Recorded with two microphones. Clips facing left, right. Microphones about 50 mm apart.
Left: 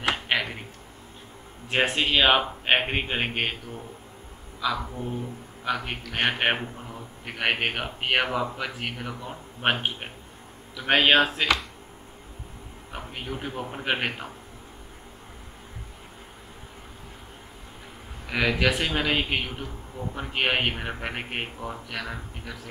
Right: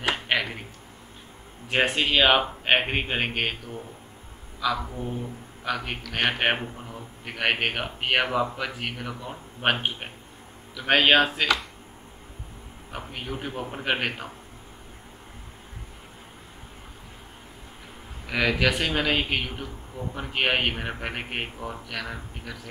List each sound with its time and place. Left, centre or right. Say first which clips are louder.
0.1 s a sound: even; centre
1.7 s a man's voice: right 1 dB; centre
4.8 s a man's voice: even; centre
12.9 s a man's voice: right 1 dB; centre
18.3 s a man's voice: even; centre